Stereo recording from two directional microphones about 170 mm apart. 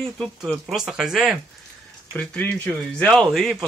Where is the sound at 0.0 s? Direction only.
Centre (ahead or behind).